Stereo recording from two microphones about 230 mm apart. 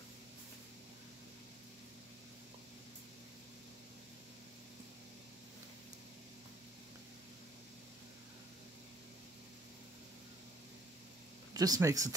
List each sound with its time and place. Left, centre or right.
11.5 s speech: centre